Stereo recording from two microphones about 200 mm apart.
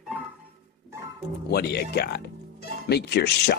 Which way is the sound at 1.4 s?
55° left (ahead or behind).